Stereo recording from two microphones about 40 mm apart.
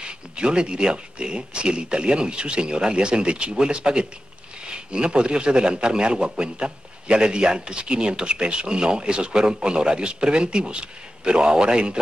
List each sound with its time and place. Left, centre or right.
0.0 s a man's voice: right